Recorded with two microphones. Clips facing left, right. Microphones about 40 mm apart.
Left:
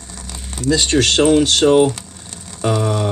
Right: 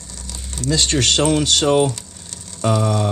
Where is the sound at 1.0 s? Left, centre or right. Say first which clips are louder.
Left 6 dB; left.